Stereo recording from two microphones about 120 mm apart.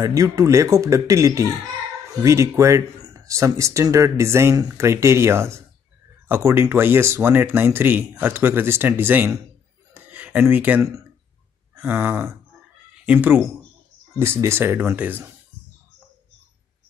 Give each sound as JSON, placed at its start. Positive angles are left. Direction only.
{"t": 0.0, "sound": "speech", "side_deg": -30}
{"t": 9.9, "sound": "a sound", "side_deg": -15}
{"t": 11.7, "sound": "speech", "side_deg": -15}